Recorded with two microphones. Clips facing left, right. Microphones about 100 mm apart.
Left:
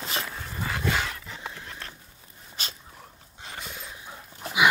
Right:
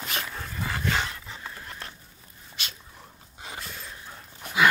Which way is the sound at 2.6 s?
40° left (ahead or behind).